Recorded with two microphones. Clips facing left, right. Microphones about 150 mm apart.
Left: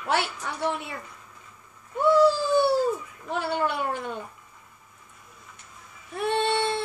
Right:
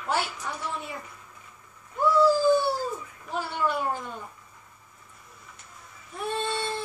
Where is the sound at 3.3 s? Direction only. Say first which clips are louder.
Left 2 dB; 70° left (ahead or behind).